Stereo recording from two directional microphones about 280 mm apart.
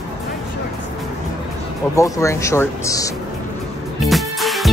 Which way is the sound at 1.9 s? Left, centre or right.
Centre.